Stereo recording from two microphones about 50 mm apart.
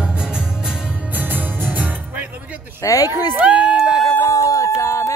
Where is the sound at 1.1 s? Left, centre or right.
Right.